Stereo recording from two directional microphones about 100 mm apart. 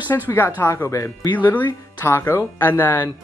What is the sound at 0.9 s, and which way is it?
Speech, 30° left (ahead or behind).